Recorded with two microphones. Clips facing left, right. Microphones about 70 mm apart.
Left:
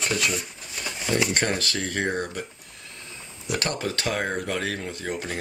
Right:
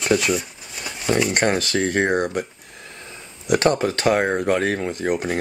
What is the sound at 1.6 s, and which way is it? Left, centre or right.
Speech, right.